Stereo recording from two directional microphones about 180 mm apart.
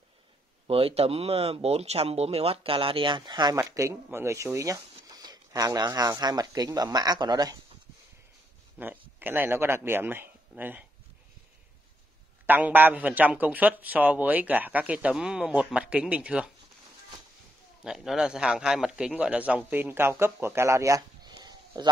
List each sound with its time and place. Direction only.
0.7 s speech: 30° right (ahead or behind)
8.7 s speech: 10° right (ahead or behind)
12.4 s a man's voice: 10° right (ahead or behind)
17.8 s a man's voice: 5° right (ahead or behind); by 21.8 s 25° right (ahead or behind)